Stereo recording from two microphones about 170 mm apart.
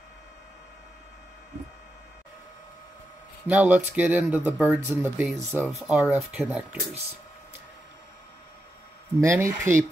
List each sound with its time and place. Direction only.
3.4 s speech: 10° right (ahead or behind)
9.2 s speech: 15° right (ahead or behind)